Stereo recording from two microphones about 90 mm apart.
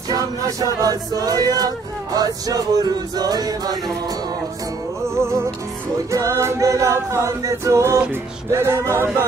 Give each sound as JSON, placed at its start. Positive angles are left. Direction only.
{"t": 0.1, "sound": "music", "side_deg": -40}
{"t": 5.0, "sound": "speech", "side_deg": -30}
{"t": 6.1, "sound": "a capella", "side_deg": -35}
{"t": 8.1, "sound": "speech", "side_deg": -30}